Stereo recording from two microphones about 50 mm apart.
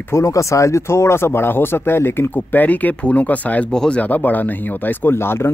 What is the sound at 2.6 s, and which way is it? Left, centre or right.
Speech, left.